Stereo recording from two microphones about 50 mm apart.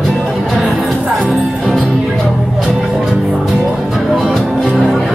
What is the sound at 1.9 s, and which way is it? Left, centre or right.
Music, centre.